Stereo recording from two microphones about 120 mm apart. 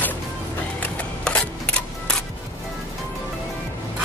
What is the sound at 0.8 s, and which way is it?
Music, 10° left (ahead or behind).